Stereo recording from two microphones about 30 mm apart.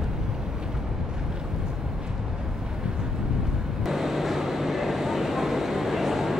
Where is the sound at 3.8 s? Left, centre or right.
Centre.